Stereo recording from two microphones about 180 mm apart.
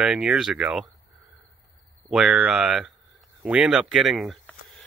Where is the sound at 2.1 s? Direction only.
5° right (ahead or behind).